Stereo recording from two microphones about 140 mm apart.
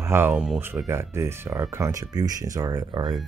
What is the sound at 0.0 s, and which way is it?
Speech, 15° right (ahead or behind).